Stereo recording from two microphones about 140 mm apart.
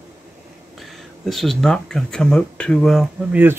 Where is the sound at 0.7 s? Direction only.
Centre (ahead or behind).